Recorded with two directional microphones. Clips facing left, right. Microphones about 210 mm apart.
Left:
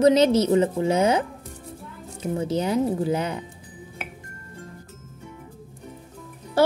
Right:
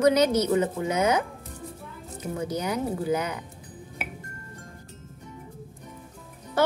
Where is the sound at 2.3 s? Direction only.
25° left (ahead or behind).